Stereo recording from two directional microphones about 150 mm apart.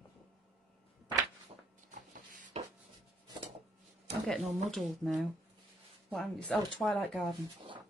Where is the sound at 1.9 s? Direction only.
60° right (ahead or behind).